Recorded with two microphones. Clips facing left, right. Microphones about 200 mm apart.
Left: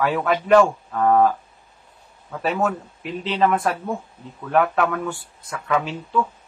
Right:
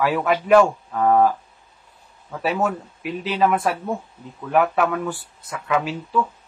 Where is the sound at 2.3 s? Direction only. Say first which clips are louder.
Even; 5° right (ahead or behind).